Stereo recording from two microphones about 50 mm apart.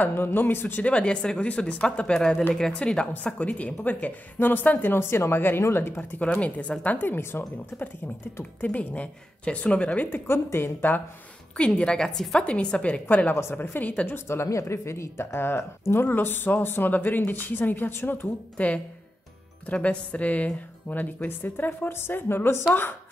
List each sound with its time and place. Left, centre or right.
0.1 s a woman's voice: left
0.8 s a woman's voice: left
3.3 s speech: left
4.9 s a woman's voice: left
6.1 s speech: left
7.1 s a woman's voice: left
8.5 s speech: left
10.0 s a woman's voice: left
11.5 s a woman's voice: left
12.4 s speech: left
14.1 s a woman's voice: left
18.6 s speech: left
21.3 s a woman's voice: left